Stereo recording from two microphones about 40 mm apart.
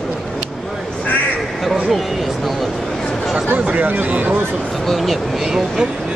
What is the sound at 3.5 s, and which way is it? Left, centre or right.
Speech, right.